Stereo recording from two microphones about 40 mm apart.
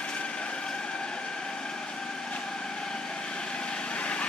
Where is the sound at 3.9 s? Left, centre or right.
Left.